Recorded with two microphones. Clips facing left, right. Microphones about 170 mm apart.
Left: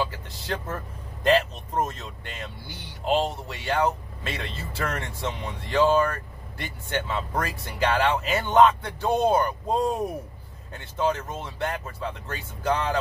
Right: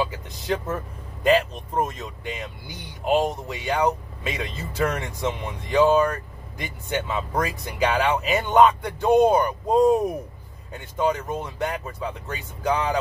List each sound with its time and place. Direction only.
0.0 s speech: 15° right (ahead or behind)